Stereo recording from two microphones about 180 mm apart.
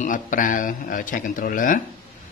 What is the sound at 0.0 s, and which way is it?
Speech, 45° left (ahead or behind).